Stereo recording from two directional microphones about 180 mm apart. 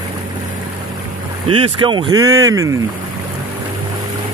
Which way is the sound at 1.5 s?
25° right (ahead or behind).